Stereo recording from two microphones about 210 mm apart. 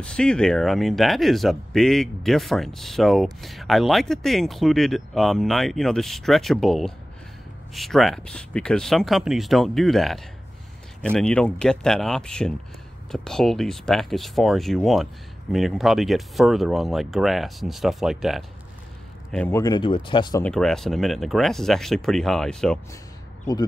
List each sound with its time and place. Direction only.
0.0 s speech: 5° left (ahead or behind)
19.3 s speech: 10° left (ahead or behind)
20.4 s speech: 5° left (ahead or behind)